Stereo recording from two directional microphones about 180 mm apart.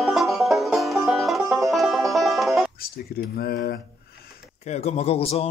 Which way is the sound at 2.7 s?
55° left (ahead or behind).